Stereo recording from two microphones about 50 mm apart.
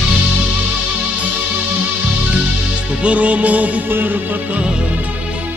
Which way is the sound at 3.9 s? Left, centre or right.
Right.